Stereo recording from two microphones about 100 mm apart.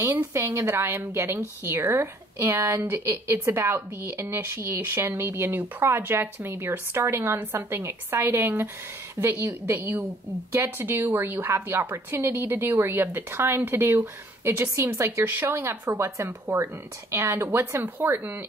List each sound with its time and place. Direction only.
0.0 s speech: 20° right (ahead or behind)
9.8 s speech: 20° right (ahead or behind)